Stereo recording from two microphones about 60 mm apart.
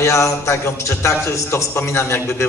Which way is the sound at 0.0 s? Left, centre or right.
Left.